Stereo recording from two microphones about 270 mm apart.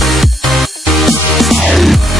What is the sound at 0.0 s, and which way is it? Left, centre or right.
Music, centre.